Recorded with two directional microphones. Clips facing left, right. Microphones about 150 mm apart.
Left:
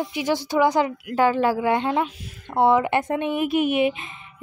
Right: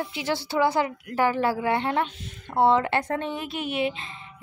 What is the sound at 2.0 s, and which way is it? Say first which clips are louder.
Speech: left 2 dB; 5° left (ahead or behind).